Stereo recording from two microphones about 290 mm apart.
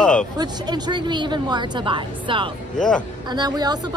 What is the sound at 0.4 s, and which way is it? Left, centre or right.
A woman's voice, centre.